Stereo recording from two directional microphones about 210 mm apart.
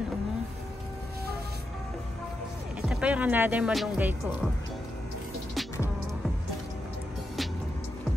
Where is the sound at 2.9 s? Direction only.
5° right (ahead or behind).